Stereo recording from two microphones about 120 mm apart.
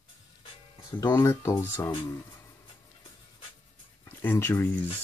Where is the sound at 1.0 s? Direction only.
25° left (ahead or behind).